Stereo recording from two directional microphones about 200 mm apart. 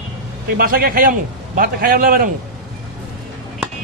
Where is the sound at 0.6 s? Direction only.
45° right (ahead or behind).